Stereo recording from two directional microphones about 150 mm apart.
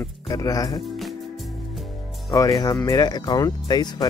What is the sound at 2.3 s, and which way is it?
Speech, 25° left (ahead or behind).